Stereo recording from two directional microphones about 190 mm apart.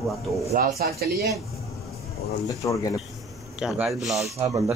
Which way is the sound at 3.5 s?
5° right (ahead or behind).